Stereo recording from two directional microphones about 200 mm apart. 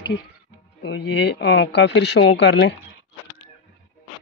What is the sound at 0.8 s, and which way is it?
Speech, 55° left (ahead or behind).